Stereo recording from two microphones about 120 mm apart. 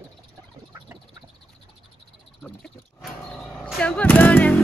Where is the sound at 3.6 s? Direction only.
10° left (ahead or behind).